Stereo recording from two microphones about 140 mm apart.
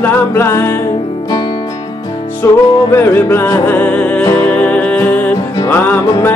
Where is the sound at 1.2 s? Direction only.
30° left (ahead or behind); by 5.3 s 15° left (ahead or behind).